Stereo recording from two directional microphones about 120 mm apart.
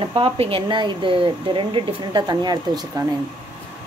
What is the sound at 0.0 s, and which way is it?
Speech, 45° right (ahead or behind).